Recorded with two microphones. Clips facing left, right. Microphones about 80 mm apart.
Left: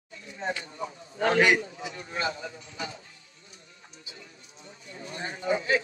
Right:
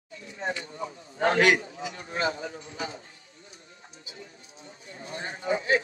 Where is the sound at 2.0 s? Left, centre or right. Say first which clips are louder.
Right 2 dB; right.